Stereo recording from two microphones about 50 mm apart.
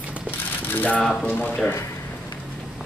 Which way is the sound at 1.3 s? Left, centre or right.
Left.